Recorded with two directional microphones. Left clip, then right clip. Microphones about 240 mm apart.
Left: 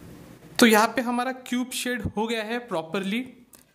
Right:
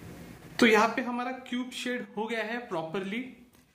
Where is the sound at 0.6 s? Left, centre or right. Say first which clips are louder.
Left 4 dB; left.